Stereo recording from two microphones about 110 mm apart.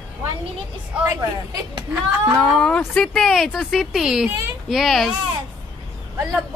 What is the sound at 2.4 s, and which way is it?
Speech, 5° left (ahead or behind).